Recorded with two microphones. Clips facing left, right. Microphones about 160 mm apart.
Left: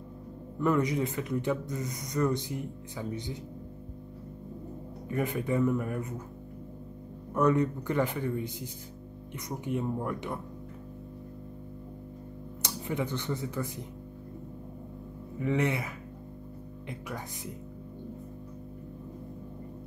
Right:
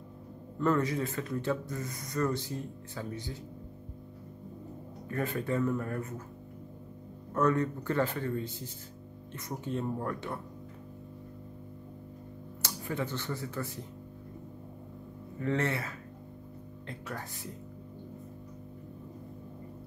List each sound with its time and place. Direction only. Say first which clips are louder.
0.6 s speech: left 2 dB; 15° left (ahead or behind)
5.0 s speech: left 2 dB; 15° left (ahead or behind)
7.3 s speech: left 3 dB; 15° left (ahead or behind)
12.6 s speech: left 2 dB; 15° left (ahead or behind)
15.3 s speech: left 2 dB; 15° left (ahead or behind)